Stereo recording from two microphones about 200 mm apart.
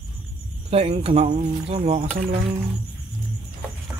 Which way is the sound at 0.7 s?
30° right (ahead or behind).